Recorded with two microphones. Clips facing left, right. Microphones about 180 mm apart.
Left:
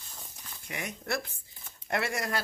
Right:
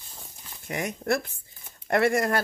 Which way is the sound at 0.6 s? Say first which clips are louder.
Right 8 dB; 45° right (ahead or behind).